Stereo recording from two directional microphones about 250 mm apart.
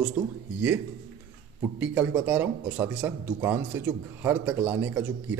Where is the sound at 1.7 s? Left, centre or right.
Centre.